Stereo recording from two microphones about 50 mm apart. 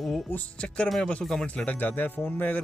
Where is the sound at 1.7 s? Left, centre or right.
Left.